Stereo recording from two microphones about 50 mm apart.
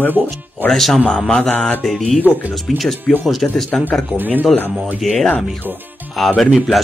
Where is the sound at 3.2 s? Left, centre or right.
Centre.